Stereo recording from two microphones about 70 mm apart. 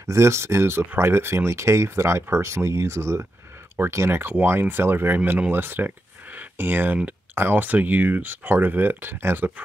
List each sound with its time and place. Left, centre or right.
0.0 s speech: right